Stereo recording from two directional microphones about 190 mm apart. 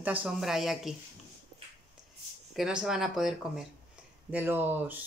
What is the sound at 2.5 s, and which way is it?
Speech, 5° right (ahead or behind).